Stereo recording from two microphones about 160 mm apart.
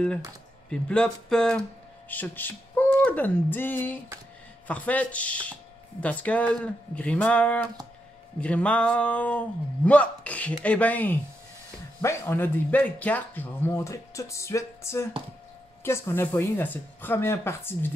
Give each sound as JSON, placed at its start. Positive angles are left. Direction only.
{"t": 0.7, "sound": "speech", "side_deg": 5}